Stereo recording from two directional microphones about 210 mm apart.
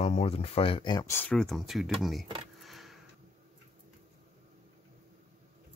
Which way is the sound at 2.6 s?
Centre (ahead or behind).